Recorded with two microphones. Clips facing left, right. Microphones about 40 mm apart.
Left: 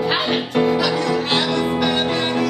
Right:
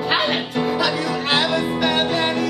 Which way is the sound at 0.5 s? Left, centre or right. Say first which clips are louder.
Left 4 dB; centre.